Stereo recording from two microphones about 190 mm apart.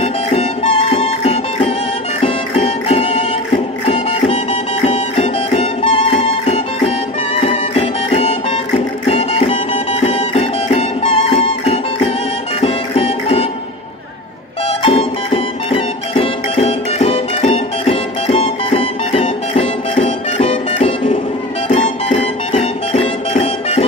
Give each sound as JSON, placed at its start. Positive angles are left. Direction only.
{"t": 0.0, "sound": "music", "side_deg": 35}
{"t": 14.8, "sound": "music", "side_deg": 30}